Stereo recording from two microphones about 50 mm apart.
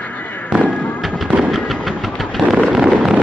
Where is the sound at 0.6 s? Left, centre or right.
Left.